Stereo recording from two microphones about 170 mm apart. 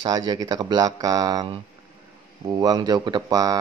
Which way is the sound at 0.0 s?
25° right (ahead or behind).